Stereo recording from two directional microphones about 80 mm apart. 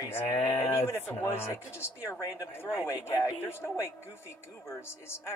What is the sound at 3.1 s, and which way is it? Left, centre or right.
Speech, left.